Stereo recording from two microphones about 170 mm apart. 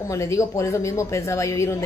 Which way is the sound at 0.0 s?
20° left (ahead or behind).